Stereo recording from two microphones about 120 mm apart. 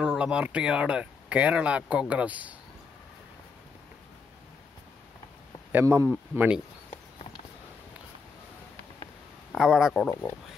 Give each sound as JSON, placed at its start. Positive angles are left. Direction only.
{"t": 0.0, "sound": "speech", "side_deg": -5}
{"t": 5.7, "sound": "speech", "side_deg": -20}
{"t": 9.5, "sound": "a man's voice", "side_deg": -5}